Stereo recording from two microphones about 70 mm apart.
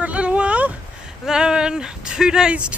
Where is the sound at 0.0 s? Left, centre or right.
Centre.